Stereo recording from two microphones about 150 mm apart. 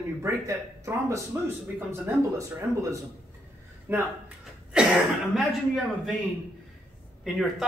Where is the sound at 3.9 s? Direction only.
10° right (ahead or behind).